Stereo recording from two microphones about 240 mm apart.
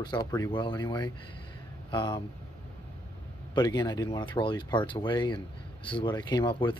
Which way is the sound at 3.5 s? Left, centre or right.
Centre.